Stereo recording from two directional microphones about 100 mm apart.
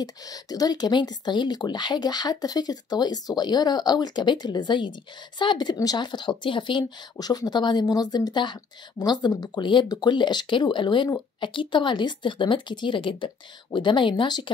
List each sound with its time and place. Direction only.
0.0 s speech: 40° left (ahead or behind)